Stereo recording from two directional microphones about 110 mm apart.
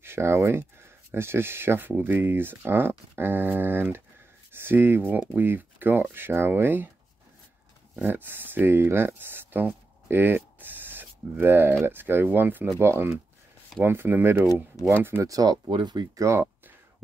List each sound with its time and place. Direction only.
0.0 s speech: 25° right (ahead or behind)
7.9 s speech: 15° right (ahead or behind)
15.6 s speech: 45° right (ahead or behind)
16.3 s a sound: 20° right (ahead or behind)